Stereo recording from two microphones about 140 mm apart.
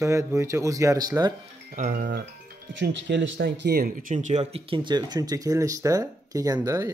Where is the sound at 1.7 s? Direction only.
70° right (ahead or behind); by 2.2 s 85° right.